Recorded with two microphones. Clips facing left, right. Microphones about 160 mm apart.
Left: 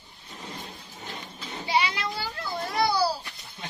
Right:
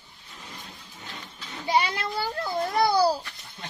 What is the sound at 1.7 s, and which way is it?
A child's voice, 50° right (ahead or behind).